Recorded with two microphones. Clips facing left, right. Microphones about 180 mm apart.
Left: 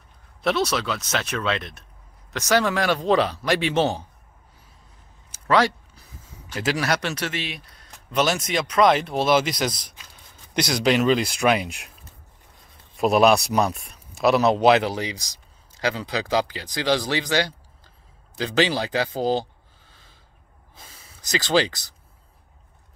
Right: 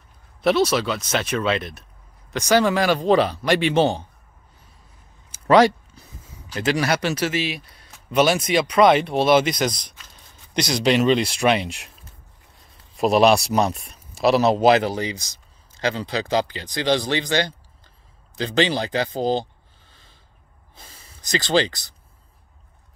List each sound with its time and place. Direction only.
0.4 s speech: centre (ahead or behind)
5.3 s a sound: 15° right (ahead or behind)
6.5 s speech: 5° left (ahead or behind)
12.9 s speech: centre (ahead or behind)
20.7 s speech: 5° left (ahead or behind)